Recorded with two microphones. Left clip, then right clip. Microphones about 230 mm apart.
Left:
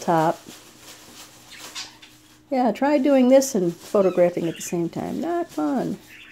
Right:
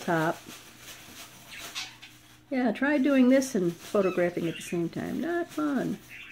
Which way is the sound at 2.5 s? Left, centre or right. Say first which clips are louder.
Left 7 dB; centre.